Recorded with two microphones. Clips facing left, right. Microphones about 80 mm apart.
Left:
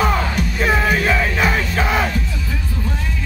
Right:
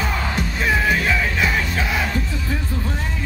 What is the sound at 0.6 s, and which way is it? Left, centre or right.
Music, left.